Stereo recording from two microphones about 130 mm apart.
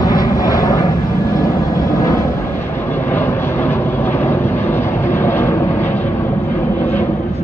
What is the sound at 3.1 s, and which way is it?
Vehicle, 15° left (ahead or behind).